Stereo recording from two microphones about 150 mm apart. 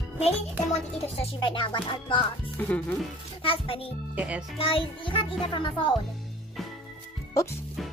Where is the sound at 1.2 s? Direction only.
35° left (ahead or behind).